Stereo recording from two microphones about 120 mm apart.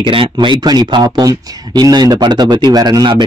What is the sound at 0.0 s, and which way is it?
Speech, 45° right (ahead or behind).